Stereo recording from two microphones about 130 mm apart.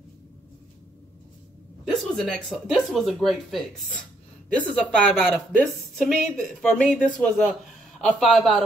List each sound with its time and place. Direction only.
1.9 s speech: 5° left (ahead or behind)